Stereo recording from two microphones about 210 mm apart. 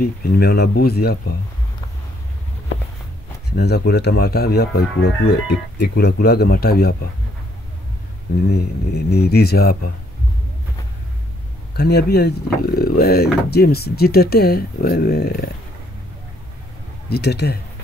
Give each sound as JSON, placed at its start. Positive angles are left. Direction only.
{"t": 0.0, "sound": "speech", "side_deg": 50}
{"t": 3.4, "sound": "speech", "side_deg": 50}
{"t": 8.4, "sound": "speech", "side_deg": 50}
{"t": 11.7, "sound": "speech", "side_deg": 50}
{"t": 17.1, "sound": "speech", "side_deg": 50}